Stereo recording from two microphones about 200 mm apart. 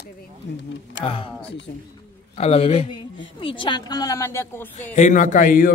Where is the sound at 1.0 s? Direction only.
25° left (ahead or behind).